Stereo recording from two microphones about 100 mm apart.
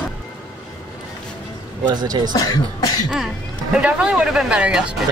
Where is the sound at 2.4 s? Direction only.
40° left (ahead or behind).